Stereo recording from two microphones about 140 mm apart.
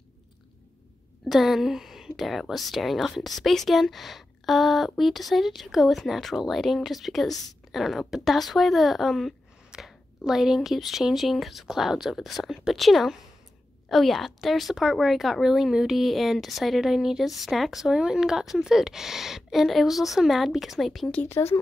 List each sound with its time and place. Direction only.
1.2 s a woman's voice: centre (ahead or behind)
21.2 s speech: 15° left (ahead or behind)